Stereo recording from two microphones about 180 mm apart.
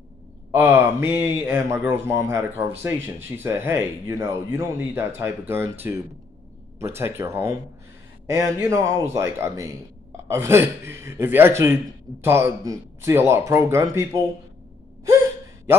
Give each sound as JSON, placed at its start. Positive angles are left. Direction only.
{"t": 0.5, "sound": "speech", "side_deg": -10}